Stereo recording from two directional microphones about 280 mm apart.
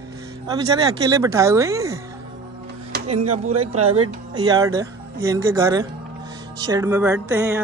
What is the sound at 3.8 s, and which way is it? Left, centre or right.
Speech, right.